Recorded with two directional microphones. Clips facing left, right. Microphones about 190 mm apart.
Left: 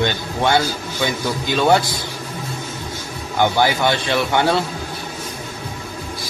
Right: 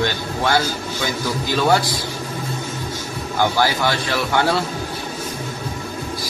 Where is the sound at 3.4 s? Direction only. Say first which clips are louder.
Left 2 dB; 20° left (ahead or behind).